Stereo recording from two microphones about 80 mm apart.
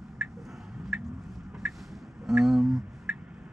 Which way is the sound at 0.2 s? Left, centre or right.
Centre.